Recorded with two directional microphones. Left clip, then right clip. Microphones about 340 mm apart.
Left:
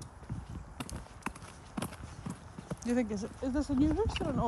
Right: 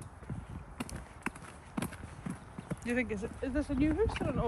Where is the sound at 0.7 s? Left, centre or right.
Centre.